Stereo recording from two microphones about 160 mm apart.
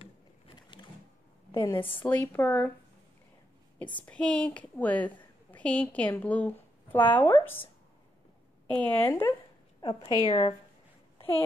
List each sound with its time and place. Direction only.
0.0 s a sound: 35° left (ahead or behind)
1.5 s a woman's voice: 20° left (ahead or behind)
4.0 s a woman's voice: 5° left (ahead or behind)
8.6 s speech: 10° left (ahead or behind)
9.8 s a woman's voice: 25° left (ahead or behind)